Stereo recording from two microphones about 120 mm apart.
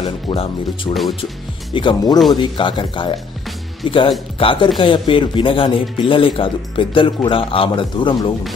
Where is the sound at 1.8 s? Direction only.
40° left (ahead or behind).